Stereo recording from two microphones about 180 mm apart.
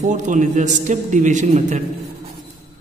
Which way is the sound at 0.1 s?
45° right (ahead or behind).